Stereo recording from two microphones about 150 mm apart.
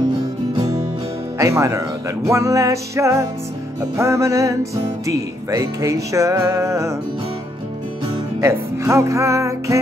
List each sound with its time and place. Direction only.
1.4 s music: 20° right (ahead or behind)
8.4 s music: 20° right (ahead or behind)